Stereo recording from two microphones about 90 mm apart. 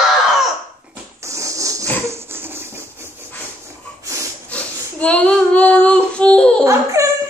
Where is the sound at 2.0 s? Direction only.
25° right (ahead or behind).